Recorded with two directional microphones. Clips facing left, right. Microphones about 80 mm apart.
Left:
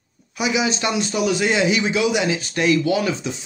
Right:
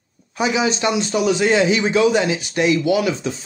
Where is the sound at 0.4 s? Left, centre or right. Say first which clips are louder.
Right 2 dB; right.